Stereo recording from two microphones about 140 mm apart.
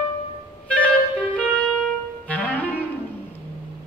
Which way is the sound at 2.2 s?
10° left (ahead or behind).